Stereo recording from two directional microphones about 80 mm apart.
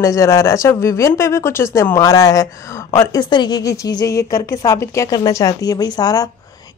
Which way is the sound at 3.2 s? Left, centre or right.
Left.